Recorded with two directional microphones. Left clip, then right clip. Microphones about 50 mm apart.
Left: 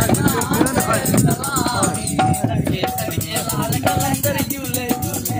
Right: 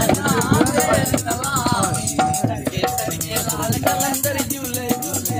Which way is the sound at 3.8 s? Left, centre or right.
Left.